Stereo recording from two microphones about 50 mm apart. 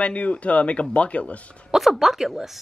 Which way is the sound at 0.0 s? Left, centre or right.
Left.